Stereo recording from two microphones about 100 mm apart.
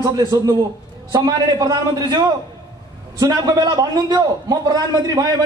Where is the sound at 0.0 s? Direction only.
45° right (ahead or behind).